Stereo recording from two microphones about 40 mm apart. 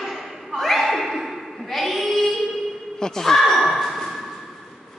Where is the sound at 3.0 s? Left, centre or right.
Centre.